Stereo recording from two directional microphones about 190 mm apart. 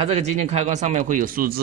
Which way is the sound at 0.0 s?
35° right (ahead or behind).